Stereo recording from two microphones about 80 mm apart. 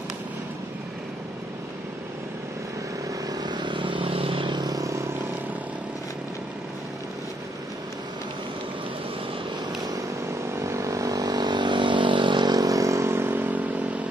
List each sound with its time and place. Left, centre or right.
3.3 s vehicle: right
10.5 s vehicle: right
12.5 s vehicle: right
13.4 s vehicle: right